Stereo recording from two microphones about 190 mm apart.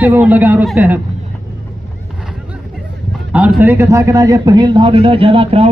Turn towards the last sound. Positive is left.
turn(degrees=-30)  # may be behind; listen again after turning